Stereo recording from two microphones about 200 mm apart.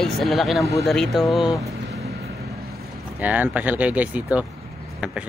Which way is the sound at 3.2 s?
5° right (ahead or behind).